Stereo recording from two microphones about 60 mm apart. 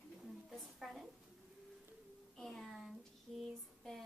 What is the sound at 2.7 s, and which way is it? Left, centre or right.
Child singing, centre.